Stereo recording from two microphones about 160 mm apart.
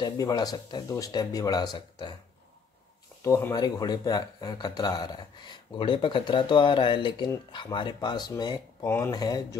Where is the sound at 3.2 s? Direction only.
20° left (ahead or behind).